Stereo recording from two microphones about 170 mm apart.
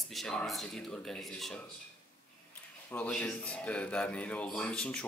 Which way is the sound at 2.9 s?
5° left (ahead or behind).